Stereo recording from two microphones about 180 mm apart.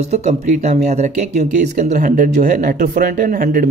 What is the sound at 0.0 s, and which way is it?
Speech, 35° right (ahead or behind).